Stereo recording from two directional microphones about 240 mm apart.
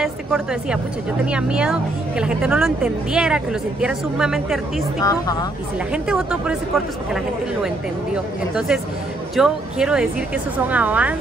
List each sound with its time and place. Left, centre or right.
0.0 s speech: centre
5.0 s speech: centre
6.0 s speech: centre